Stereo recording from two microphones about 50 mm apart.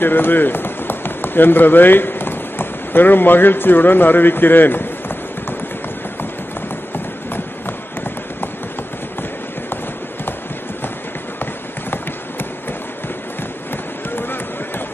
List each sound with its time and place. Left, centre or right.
0.0 s speech: left